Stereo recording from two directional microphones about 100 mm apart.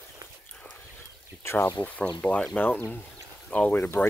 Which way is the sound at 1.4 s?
25° left (ahead or behind).